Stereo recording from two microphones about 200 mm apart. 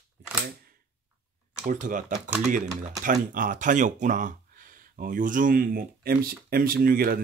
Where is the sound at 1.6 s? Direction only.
40° right (ahead or behind).